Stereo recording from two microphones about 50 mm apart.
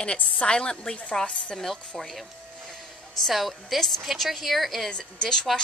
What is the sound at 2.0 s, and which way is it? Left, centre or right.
A woman's voice, centre.